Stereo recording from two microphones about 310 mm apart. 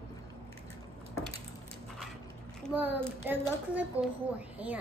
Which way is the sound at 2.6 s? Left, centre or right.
Centre.